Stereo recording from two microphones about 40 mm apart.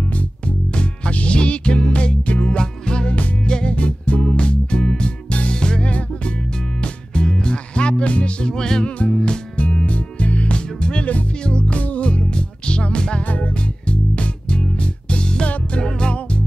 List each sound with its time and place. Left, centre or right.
0.1 s music: left
2.6 s music: left
3.7 s music: left; by 5.1 s centre
5.3 s music: left
5.9 s music: left
6.8 s music: left
8.8 s music: left
13.2 s music: left
13.6 s music: left